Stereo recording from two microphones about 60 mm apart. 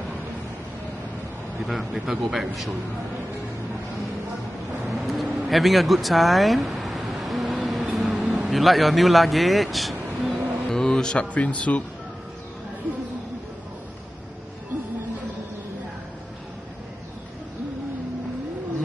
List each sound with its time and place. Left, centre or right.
1.7 s speech: centre
4.8 s vehicle: centre
8.5 s speech: centre
11.3 s speech: left